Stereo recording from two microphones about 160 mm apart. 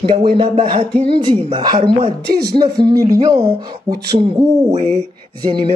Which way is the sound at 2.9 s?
20° right (ahead or behind).